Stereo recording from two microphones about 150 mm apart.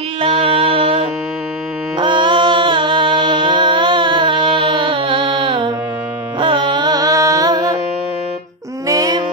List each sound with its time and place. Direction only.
0.2 s music: 40° right (ahead or behind)
6.4 s carnatic music: 35° right (ahead or behind)
8.8 s a sound: 25° right (ahead or behind)